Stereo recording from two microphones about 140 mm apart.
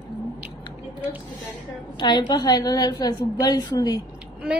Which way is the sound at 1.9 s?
30° left (ahead or behind).